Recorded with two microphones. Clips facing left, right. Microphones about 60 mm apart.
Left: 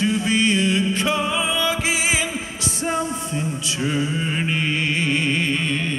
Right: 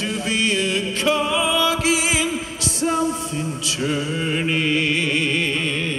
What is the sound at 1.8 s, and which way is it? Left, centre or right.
Music, centre.